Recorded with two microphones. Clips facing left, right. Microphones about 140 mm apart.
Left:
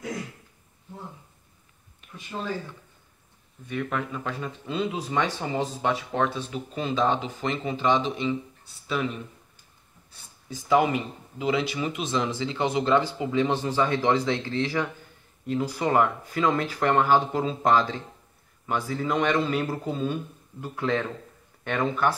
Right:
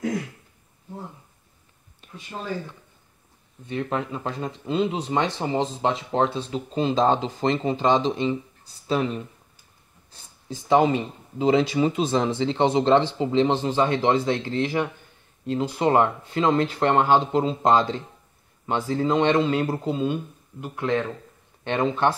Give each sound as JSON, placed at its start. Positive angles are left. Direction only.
{"t": 2.0, "sound": "a sound", "side_deg": -30}
{"t": 3.6, "sound": "speech", "side_deg": -30}
{"t": 10.5, "sound": "speech", "side_deg": -30}